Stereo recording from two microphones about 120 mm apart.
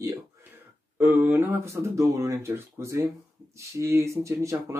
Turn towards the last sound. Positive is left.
turn(degrees=-25)  # may be behind; listen again after turning